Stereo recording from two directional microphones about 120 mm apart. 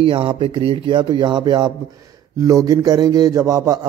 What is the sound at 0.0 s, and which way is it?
A man's voice, 45° right (ahead or behind).